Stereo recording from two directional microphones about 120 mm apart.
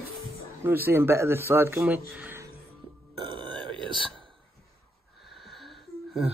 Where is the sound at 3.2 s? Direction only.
40° right (ahead or behind).